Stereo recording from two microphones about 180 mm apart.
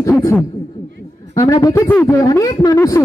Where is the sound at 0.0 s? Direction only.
15° left (ahead or behind).